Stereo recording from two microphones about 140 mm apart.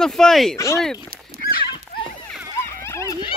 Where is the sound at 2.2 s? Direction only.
20° left (ahead or behind).